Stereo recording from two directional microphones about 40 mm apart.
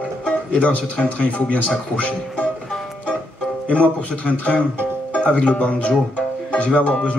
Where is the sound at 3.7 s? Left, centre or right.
Left.